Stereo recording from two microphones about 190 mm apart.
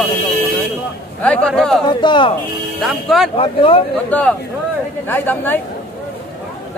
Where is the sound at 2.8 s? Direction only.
Centre (ahead or behind).